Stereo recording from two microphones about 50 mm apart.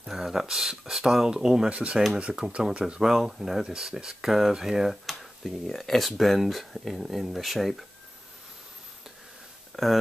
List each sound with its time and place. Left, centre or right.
0.0 s speech: centre
5.7 s speech: centre
9.7 s speech: centre